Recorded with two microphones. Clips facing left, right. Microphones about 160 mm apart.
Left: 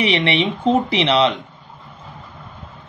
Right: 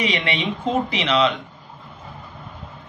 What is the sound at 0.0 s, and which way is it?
A man's voice, 30° left (ahead or behind).